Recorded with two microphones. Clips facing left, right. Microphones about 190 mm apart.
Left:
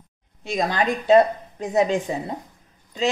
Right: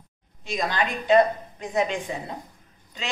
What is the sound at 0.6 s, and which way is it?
A woman's voice, 40° left (ahead or behind).